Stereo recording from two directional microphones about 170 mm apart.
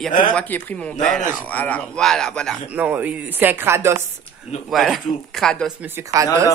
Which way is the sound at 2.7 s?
10° right (ahead or behind).